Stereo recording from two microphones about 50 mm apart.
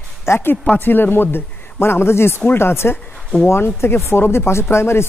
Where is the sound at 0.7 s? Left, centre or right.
Left.